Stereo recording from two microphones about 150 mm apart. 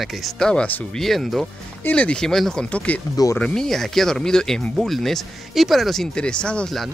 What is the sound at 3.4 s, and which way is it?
Speech, 5° left (ahead or behind).